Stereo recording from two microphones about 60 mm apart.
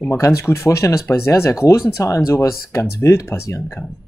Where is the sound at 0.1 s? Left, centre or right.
Left.